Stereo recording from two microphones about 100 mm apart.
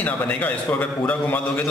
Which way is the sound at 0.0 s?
15° left (ahead or behind).